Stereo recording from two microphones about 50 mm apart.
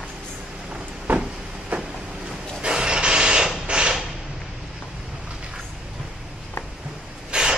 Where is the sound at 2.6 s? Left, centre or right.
Centre.